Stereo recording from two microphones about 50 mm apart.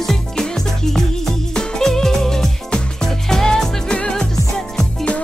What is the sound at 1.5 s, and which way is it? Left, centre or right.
Music, centre.